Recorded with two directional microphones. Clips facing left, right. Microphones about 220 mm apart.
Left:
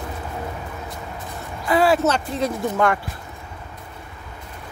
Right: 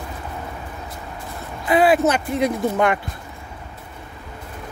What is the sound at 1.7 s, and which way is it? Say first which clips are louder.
Speech: right 2 dB; 20° right (ahead or behind).